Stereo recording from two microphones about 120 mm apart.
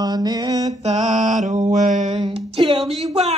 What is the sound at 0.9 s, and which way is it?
Mantra, 80° right.